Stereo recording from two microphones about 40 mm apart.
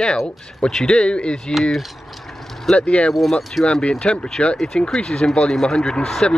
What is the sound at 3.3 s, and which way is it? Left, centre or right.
Speech, centre.